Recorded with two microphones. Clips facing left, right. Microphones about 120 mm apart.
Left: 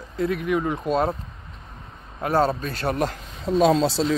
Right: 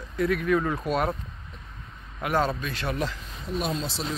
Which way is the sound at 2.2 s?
35° left (ahead or behind).